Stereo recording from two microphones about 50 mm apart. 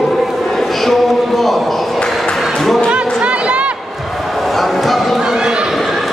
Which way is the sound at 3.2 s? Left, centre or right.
Right.